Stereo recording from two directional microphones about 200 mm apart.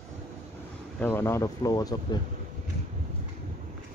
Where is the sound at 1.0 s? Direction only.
10° left (ahead or behind).